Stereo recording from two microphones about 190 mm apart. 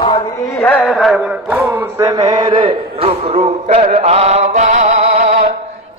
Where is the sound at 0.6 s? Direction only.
5° left (ahead or behind); by 5.5 s 35° right (ahead or behind).